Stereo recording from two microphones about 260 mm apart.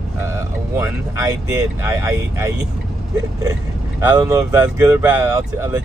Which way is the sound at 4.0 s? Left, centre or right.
Centre.